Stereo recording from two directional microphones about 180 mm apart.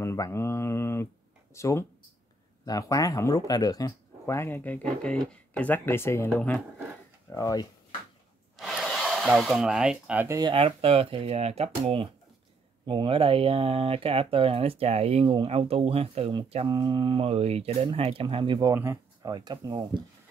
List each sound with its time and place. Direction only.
0.0 s speech: 15° left (ahead or behind)
8.5 s speech: centre (ahead or behind); by 10.5 s 15° right (ahead or behind)
10.5 s speech: 30° right (ahead or behind)